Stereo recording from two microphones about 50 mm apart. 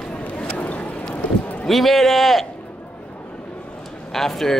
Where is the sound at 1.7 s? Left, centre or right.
Centre.